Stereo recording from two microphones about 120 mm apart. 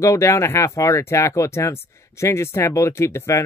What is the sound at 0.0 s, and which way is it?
Speech, 25° left (ahead or behind).